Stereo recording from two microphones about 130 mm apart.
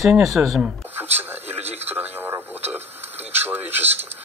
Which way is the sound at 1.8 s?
15° right (ahead or behind).